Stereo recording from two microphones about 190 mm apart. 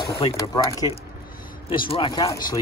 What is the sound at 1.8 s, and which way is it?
Speech, 25° left (ahead or behind).